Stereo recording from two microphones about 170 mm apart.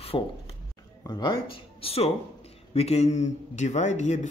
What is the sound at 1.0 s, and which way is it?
A man's voice, 25° left (ahead or behind).